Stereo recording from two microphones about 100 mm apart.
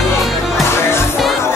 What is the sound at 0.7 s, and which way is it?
Music, 25° left (ahead or behind).